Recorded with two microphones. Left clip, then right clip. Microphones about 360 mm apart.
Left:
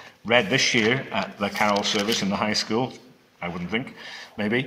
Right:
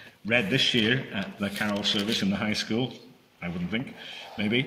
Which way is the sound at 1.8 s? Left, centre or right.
Left.